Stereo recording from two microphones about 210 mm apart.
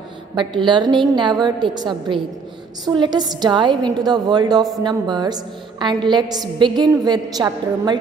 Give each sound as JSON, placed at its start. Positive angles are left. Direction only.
{"t": 0.4, "sound": "a woman's voice", "side_deg": -25}